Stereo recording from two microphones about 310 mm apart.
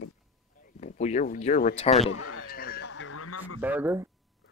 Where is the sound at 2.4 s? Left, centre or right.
Left.